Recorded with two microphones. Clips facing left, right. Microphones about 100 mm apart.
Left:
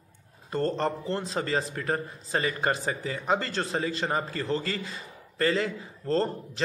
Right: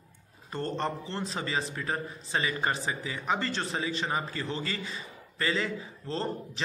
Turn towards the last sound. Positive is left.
turn(degrees=40)  # may be behind; listen again after turning